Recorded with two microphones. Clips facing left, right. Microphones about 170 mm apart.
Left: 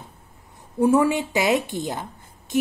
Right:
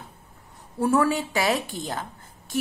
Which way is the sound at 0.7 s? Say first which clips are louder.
Left 4 dB; 15° left (ahead or behind).